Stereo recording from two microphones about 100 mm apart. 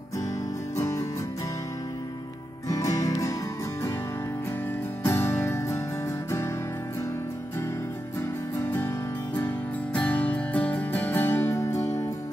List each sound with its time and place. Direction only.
0.7 s music: 30° left (ahead or behind)
2.7 s music: 35° left (ahead or behind)
5.0 s music: 25° left (ahead or behind)
8.5 s music: 25° left (ahead or behind)